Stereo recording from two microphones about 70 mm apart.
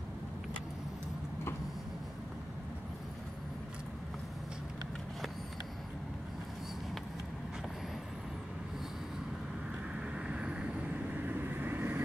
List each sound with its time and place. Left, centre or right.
9.9 s vehicle: centre
11.1 s vehicle: right